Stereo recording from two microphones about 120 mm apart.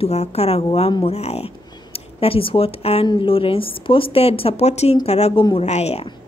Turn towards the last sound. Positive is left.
turn(degrees=65)  # may be behind; listen again after turning